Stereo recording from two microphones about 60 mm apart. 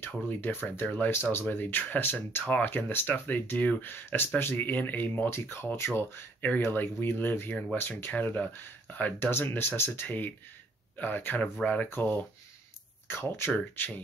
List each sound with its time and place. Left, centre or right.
0.0 s speech: left
5.3 s speech: left
6.4 s speech: left
13.1 s speech: left
13.7 s speech: left